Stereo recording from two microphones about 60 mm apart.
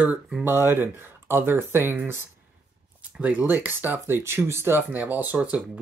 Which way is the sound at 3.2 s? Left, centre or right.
Right.